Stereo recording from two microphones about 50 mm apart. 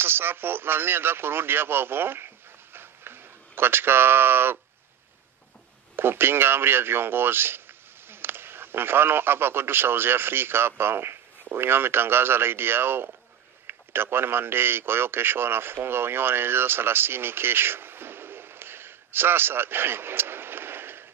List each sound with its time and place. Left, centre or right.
0.0 s speech: right
5.9 s a man's voice: right